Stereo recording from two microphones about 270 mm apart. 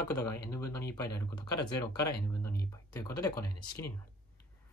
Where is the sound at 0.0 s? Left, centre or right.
Centre.